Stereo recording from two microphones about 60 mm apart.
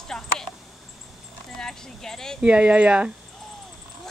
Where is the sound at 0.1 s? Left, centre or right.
Centre.